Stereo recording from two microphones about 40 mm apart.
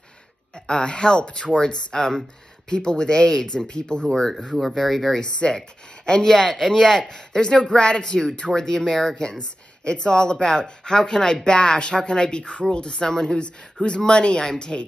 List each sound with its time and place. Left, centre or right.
0.7 s speech: left
4.6 s speech: centre
5.2 s speech: left
8.6 s speech: centre
9.8 s speech: left